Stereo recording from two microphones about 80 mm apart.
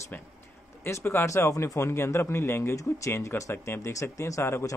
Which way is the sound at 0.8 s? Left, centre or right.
Left.